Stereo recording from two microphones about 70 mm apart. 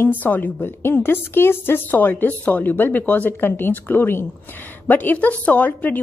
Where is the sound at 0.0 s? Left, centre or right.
Left.